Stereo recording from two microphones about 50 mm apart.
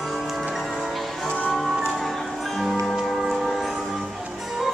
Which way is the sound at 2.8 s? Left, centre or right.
Centre.